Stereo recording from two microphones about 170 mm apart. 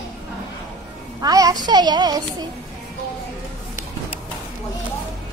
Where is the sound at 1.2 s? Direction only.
20° right (ahead or behind).